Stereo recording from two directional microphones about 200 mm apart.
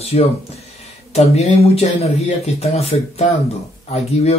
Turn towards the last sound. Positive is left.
turn(degrees=30)  # may be behind; listen again after turning